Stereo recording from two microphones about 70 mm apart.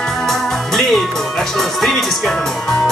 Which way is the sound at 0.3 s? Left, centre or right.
Centre.